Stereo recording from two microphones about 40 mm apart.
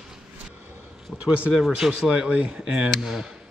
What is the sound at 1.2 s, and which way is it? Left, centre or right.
Speech, right.